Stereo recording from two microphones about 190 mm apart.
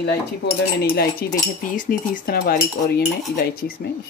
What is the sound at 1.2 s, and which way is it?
Cutlery, 55° left (ahead or behind).